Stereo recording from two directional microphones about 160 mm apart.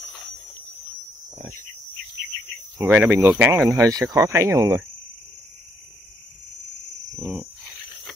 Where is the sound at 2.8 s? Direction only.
15° right (ahead or behind).